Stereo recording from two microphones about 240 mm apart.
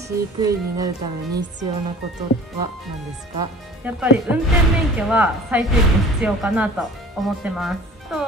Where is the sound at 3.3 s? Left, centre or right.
Centre.